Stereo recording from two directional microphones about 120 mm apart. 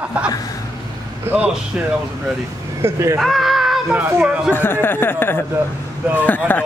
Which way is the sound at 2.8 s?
25° right (ahead or behind).